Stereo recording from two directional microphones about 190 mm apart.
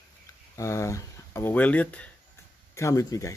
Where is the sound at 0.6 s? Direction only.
15° left (ahead or behind).